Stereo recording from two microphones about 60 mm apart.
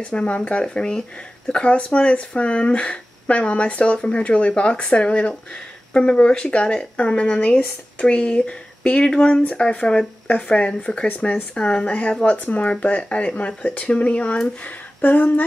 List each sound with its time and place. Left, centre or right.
0.0 s speech: left